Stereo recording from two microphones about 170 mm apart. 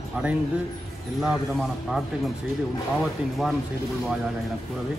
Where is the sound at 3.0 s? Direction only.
Centre (ahead or behind).